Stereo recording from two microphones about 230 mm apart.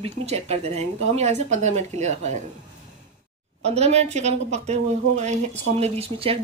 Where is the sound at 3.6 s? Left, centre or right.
Right.